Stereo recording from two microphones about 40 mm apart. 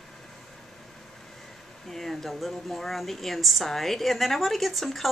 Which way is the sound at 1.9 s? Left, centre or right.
Centre.